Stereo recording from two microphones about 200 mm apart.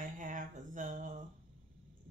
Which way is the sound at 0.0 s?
40° right (ahead or behind).